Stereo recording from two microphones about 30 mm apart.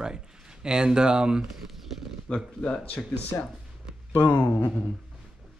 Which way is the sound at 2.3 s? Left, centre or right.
Left.